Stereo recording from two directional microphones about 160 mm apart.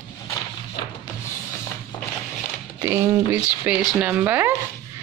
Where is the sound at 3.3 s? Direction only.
10° right (ahead or behind).